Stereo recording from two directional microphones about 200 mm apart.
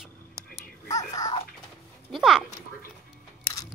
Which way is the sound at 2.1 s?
Centre (ahead or behind).